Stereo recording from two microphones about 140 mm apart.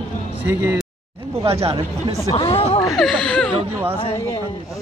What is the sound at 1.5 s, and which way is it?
Speech, 45° right (ahead or behind).